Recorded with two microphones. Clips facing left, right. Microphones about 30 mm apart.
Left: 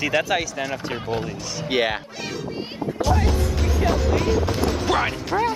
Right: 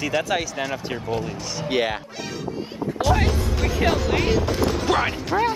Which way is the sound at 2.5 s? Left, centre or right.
Left.